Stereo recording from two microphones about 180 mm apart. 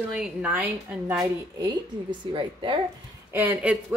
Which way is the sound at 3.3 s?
10° right (ahead or behind).